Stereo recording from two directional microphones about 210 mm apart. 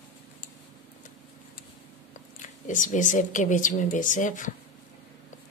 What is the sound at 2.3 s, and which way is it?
Speech, 35° left (ahead or behind).